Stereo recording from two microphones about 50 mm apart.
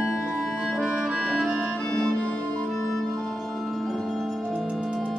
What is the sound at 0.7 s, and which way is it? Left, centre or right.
Organ, centre.